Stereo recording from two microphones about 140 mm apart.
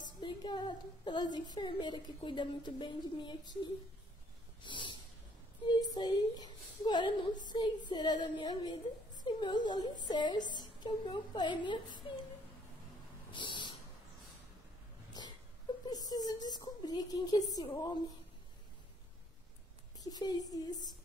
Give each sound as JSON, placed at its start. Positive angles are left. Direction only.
{"t": 0.2, "sound": "a woman's voice", "side_deg": 30}
{"t": 4.6, "sound": "a sound", "side_deg": 35}
{"t": 5.7, "sound": "a woman's voice", "side_deg": 30}
{"t": 13.3, "sound": "a sound", "side_deg": 35}
{"t": 15.9, "sound": "speech", "side_deg": 25}
{"t": 20.1, "sound": "speech", "side_deg": 30}